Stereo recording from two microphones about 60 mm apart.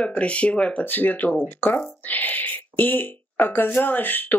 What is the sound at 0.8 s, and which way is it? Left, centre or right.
Speech, left.